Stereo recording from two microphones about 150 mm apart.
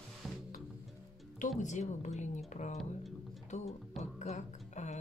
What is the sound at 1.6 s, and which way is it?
Speech, 50° left (ahead or behind).